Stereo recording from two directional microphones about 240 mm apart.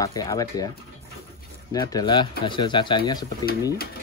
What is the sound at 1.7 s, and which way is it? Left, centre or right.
Speech, centre.